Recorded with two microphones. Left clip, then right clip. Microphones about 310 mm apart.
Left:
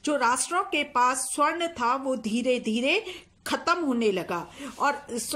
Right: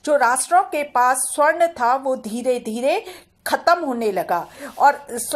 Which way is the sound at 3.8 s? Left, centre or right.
Right.